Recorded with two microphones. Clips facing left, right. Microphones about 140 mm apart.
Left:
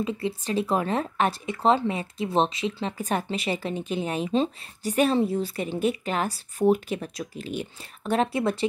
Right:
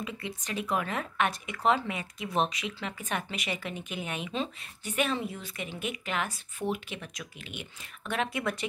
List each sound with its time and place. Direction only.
0.0 s speech: 30° left (ahead or behind)